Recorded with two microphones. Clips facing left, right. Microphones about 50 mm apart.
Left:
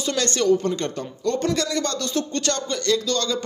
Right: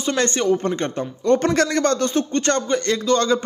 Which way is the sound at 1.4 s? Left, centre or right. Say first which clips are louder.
Right 5 dB; right.